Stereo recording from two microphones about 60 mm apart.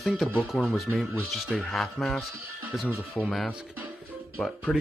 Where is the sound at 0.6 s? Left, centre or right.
Centre.